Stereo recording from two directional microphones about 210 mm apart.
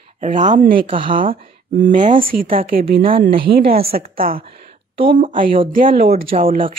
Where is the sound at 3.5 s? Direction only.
45° right (ahead or behind).